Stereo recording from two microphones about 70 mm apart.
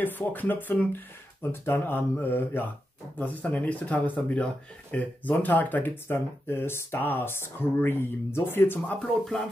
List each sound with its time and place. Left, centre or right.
0.0 s speech: left
3.2 s speech: left